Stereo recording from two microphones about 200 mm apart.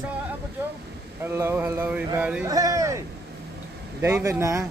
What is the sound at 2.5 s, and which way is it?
Speech, 15° right (ahead or behind).